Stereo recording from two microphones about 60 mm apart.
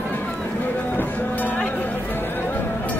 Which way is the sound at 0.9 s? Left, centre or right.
Left.